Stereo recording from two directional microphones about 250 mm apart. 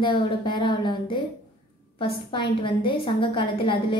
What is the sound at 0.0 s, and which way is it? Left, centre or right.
A woman's voice, centre.